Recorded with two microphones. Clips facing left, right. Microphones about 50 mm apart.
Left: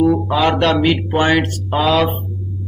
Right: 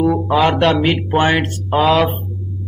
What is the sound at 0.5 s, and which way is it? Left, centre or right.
Speech, centre.